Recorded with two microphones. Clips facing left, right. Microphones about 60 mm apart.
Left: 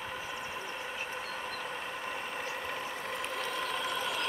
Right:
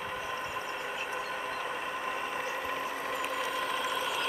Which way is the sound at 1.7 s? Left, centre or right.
Centre.